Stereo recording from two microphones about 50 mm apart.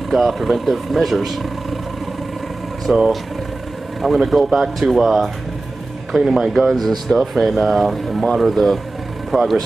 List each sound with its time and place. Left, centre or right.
0.1 s speech: centre
2.9 s speech: centre
4.0 s speech: centre